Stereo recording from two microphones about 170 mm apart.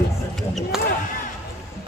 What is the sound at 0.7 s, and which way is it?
Basketball bounce, 5° right (ahead or behind).